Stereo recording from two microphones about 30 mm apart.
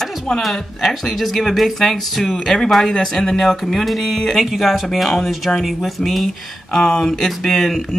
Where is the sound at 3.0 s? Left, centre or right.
Left.